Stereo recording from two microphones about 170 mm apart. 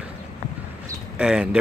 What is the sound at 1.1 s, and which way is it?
Speech, 5° right (ahead or behind).